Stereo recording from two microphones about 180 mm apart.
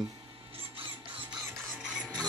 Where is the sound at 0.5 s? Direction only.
30° right (ahead or behind).